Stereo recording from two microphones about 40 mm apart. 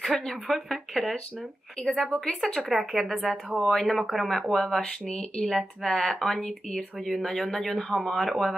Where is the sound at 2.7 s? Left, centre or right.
Centre.